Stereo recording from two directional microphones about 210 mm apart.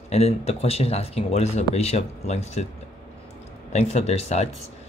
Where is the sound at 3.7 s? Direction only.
30° left (ahead or behind).